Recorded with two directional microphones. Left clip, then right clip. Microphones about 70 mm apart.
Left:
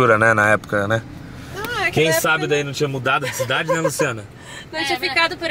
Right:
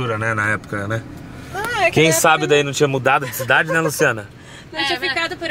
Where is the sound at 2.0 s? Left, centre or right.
Right.